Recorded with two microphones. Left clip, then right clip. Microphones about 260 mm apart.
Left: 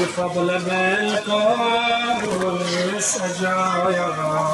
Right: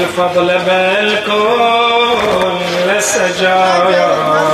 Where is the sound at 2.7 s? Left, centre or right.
Centre.